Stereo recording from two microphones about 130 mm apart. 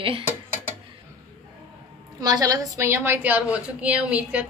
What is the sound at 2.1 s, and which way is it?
A woman's voice, 30° right (ahead or behind).